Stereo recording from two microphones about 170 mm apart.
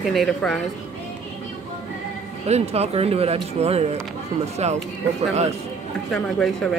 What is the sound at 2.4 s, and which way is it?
Speech, 40° right (ahead or behind).